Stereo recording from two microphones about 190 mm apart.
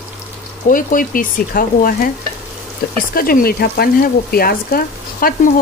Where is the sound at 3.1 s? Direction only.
50° left (ahead or behind).